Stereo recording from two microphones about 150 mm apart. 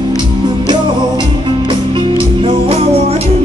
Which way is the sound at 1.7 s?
35° right (ahead or behind).